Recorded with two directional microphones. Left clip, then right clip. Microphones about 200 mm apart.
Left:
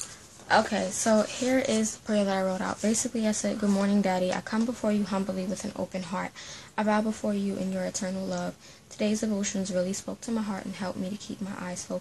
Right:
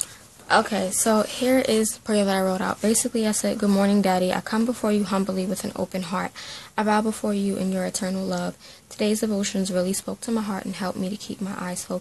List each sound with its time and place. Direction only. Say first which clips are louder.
0.5 s a woman's voice: right 3 dB; 40° right (ahead or behind)